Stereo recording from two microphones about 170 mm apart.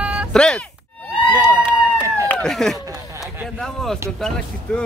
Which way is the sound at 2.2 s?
Centre (ahead or behind).